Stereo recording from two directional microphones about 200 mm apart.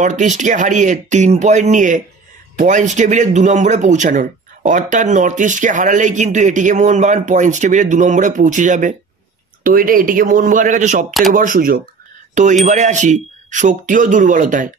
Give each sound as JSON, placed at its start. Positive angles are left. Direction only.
{"t": 0.0, "sound": "speech", "side_deg": -35}